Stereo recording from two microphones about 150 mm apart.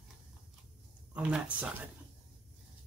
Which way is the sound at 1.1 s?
10° right (ahead or behind).